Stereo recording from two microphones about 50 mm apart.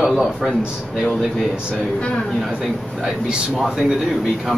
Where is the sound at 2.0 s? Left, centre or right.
Left.